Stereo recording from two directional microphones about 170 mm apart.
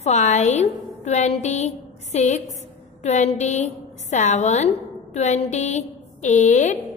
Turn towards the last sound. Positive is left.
turn(degrees=45)  # may be behind; listen again after turning